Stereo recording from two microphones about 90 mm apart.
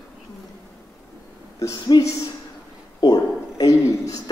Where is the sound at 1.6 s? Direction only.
40° left (ahead or behind).